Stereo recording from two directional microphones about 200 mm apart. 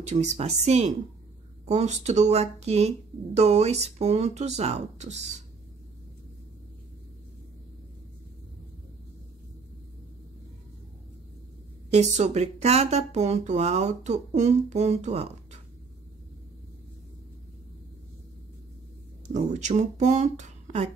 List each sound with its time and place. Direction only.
0.0 s speech: 35° right (ahead or behind)
11.9 s speech: 35° right (ahead or behind)
19.2 s speech: 35° right (ahead or behind)